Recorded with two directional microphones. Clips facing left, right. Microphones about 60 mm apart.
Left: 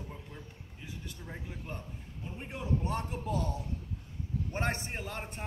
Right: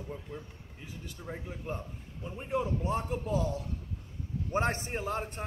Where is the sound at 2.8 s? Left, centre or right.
Centre.